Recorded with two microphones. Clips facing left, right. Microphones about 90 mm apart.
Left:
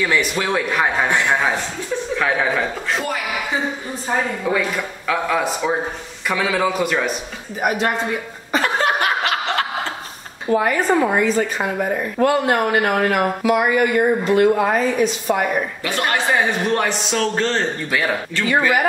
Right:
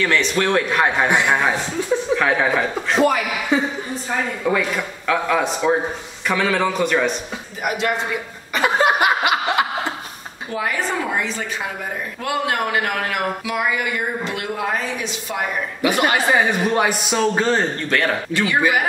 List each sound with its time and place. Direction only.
0.0 s a man's voice: 10° left (ahead or behind)
2.1 s speech: centre (ahead or behind)
4.5 s speech: centre (ahead or behind)
7.6 s a man's voice: 40° left (ahead or behind)
8.6 s chuckle: 10° right (ahead or behind)
10.5 s speech: 45° left (ahead or behind)
15.8 s a man's voice: 10° right (ahead or behind)
17.8 s a man's voice: 5° left (ahead or behind)
18.4 s a man's voice: 15° right (ahead or behind)